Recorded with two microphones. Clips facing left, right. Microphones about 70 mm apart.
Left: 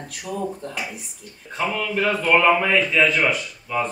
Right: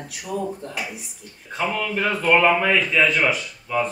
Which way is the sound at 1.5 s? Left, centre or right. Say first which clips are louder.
Even; centre.